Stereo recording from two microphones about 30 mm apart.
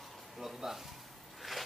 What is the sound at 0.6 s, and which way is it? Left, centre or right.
Speech, centre.